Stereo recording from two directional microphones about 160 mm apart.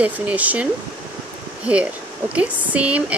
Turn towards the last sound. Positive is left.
turn(degrees=-10)  # may be behind; listen again after turning